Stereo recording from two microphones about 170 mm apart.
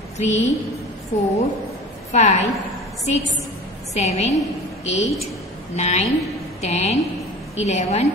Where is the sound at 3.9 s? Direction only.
40° left (ahead or behind).